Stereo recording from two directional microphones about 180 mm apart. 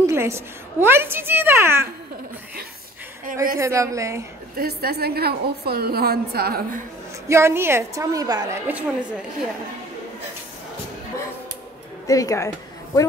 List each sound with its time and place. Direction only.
0.0 s a woman's voice: 15° right (ahead or behind)
3.5 s a woman's voice: 15° right (ahead or behind)
4.6 s a woman's voice: 60° right (ahead or behind)
7.2 s a woman's voice: 15° right (ahead or behind)
12.1 s a woman's voice: 20° left (ahead or behind)